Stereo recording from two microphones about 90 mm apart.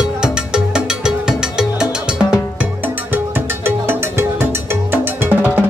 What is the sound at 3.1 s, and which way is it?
Music, 25° right (ahead or behind).